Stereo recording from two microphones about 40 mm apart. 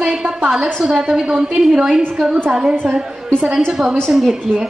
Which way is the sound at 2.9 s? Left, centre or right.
Centre.